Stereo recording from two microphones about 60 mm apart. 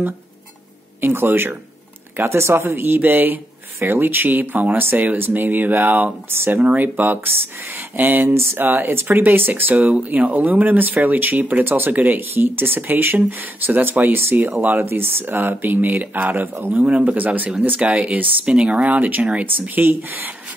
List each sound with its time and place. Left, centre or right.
1.0 s speech: right
2.1 s speech: right
6.6 s speech: right
16.8 s speech: right